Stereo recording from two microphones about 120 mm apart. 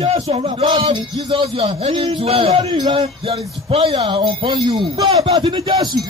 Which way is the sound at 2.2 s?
55° right (ahead or behind).